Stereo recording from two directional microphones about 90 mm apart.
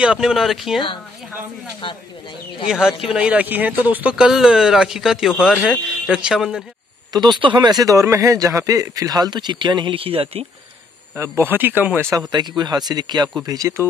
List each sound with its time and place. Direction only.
0.0 s speech: 10° right (ahead or behind)
2.6 s speech: 5° right (ahead or behind)
7.1 s speech: 55° right (ahead or behind); by 10.4 s 90° right
11.3 s speech: 20° right (ahead or behind)
12.3 s speech: 50° right (ahead or behind)
13.5 s speech: 40° right (ahead or behind)